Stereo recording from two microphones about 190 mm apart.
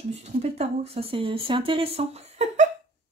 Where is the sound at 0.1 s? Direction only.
35° right (ahead or behind).